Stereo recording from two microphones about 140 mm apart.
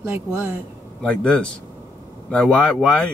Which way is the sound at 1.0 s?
5° left (ahead or behind).